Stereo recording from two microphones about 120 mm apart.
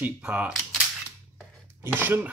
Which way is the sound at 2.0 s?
15° right (ahead or behind).